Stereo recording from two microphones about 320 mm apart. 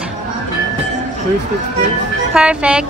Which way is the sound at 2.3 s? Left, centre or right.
Centre.